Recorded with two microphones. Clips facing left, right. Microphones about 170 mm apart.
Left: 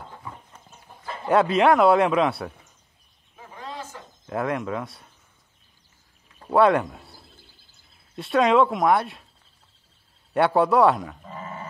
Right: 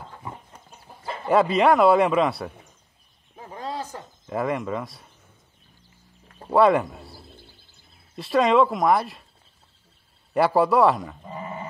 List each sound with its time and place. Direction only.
1.2 s speech: centre (ahead or behind)
3.3 s a sound: 40° right (ahead or behind)
4.3 s speech: centre (ahead or behind)
6.5 s speech: centre (ahead or behind)
8.2 s speech: centre (ahead or behind)
10.3 s speech: centre (ahead or behind)
11.2 s sheep: 20° right (ahead or behind)